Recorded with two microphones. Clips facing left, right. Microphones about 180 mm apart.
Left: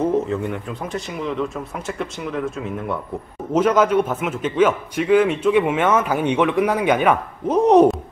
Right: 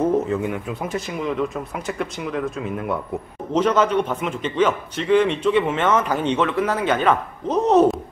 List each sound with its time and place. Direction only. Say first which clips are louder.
0.0 s a man's voice: even; centre (ahead or behind)